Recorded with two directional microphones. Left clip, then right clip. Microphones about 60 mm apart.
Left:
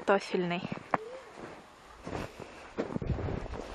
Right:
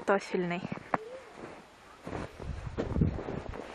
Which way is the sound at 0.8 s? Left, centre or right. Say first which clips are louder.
Left 1 dB; centre.